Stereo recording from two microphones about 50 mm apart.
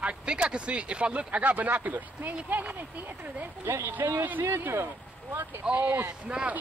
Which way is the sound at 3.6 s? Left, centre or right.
Right.